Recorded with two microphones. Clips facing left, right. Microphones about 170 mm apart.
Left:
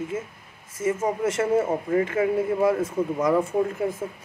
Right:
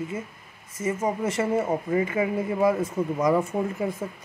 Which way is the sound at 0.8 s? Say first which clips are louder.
Left 2 dB; 5° left (ahead or behind).